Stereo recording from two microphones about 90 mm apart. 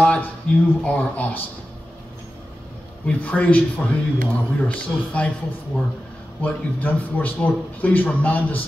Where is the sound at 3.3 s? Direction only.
15° left (ahead or behind).